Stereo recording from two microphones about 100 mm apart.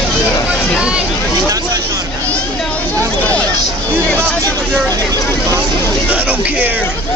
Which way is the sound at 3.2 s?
15° left (ahead or behind).